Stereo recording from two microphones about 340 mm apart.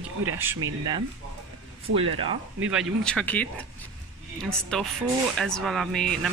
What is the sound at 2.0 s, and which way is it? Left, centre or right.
Speech, centre.